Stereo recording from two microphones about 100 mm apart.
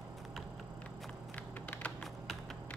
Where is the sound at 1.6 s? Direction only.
20° left (ahead or behind).